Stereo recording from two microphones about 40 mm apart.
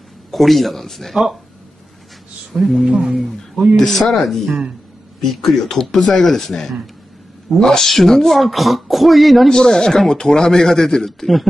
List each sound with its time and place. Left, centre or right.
0.3 s speech: centre
2.5 s speech: centre
2.8 s speech: centre
3.7 s speech: centre
6.2 s speech: centre
9.5 s speech: centre